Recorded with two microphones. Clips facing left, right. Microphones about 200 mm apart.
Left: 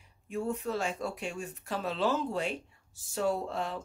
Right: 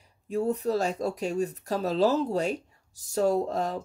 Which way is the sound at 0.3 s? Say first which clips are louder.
Right 7 dB; 40° right (ahead or behind).